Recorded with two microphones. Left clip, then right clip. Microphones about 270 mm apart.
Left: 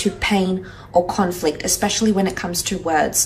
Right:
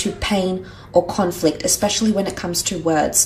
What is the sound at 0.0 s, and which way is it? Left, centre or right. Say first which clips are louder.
Speech: left 1 dB; centre.